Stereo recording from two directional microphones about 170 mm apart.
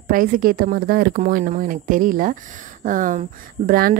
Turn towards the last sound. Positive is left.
turn(degrees=-55)  # may be behind; listen again after turning